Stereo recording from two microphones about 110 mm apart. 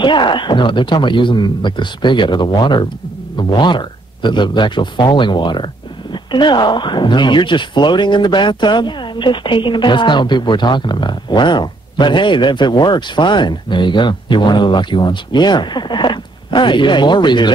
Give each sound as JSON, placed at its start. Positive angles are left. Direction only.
{"t": 0.0, "sound": "speech", "side_deg": 45}